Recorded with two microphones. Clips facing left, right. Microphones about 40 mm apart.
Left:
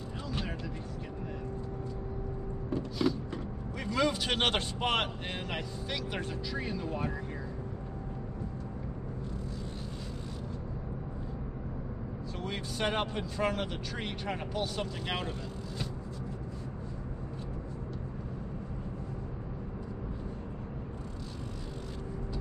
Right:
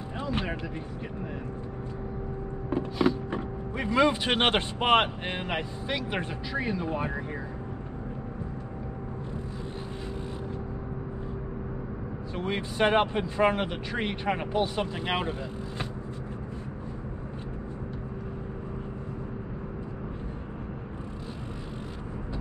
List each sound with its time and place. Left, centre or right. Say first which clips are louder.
0.3 s a sound: right 7 dB; right
2.7 s speech: right 5 dB; right
12.4 s speech: right 8 dB; right